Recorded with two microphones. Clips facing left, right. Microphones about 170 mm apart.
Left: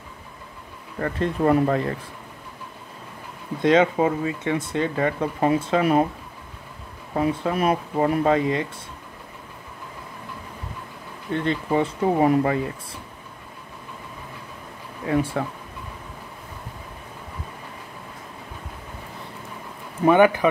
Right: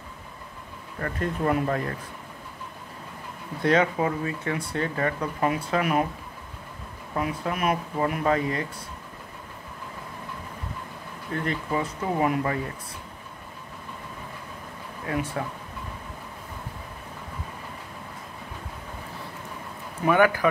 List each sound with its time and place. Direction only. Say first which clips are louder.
1.0 s speech: left 5 dB; 30° left (ahead or behind)
3.6 s speech: left 4 dB; 25° left (ahead or behind)
7.2 s speech: left 5 dB; 30° left (ahead or behind)
11.3 s speech: left 5 dB; 30° left (ahead or behind)
15.0 s speech: left 6 dB; 30° left (ahead or behind)
20.1 s speech: left 5 dB; 20° left (ahead or behind)